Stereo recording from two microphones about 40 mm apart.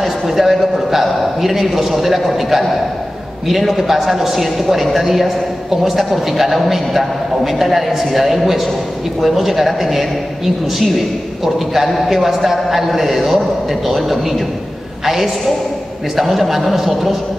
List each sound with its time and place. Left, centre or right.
0.0 s a man's voice: centre